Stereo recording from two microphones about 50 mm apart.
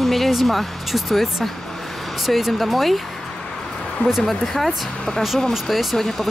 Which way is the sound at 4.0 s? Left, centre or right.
Left.